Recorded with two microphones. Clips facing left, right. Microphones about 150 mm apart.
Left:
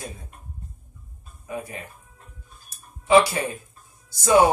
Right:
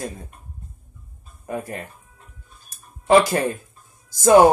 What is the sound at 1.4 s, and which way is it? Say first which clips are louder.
Speech: right 4 dB; 50° right (ahead or behind).